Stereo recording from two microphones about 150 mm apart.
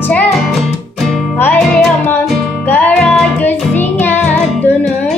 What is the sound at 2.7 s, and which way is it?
Music, 5° left (ahead or behind).